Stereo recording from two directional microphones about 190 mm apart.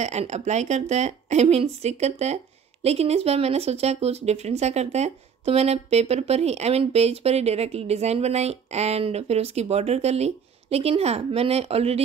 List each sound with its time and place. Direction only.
0.0 s speech: 35° right (ahead or behind)